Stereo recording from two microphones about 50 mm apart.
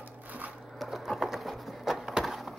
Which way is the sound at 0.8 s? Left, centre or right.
Centre.